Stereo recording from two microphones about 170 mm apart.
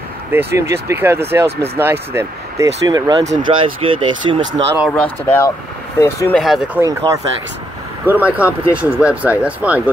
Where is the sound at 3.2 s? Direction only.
40° right (ahead or behind).